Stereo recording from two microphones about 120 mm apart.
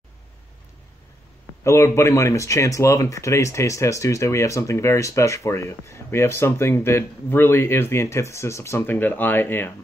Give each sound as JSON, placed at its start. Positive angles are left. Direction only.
{"t": 1.6, "sound": "speech", "side_deg": 25}